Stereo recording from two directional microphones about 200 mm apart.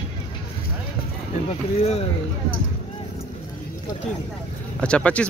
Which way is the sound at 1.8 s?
30° left (ahead or behind).